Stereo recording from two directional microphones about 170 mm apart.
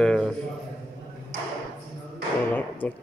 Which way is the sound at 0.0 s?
5° left (ahead or behind).